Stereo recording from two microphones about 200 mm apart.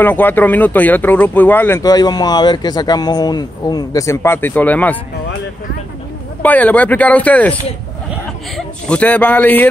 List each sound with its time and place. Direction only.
0.0 s speech: 10° left (ahead or behind)
6.4 s speech: 10° left (ahead or behind)
8.5 s speech: 5° left (ahead or behind)